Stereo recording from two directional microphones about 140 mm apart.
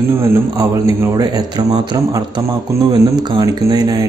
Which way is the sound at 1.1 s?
30° right (ahead or behind).